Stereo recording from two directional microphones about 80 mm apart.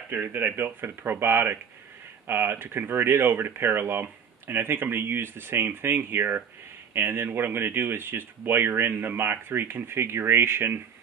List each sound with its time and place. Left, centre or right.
0.1 s speech: right